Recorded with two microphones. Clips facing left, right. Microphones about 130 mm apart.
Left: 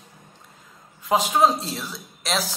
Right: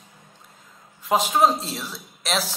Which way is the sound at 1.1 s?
Centre (ahead or behind).